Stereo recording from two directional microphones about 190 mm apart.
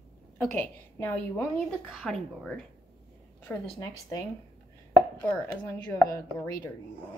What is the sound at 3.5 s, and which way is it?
Speech, 20° left (ahead or behind).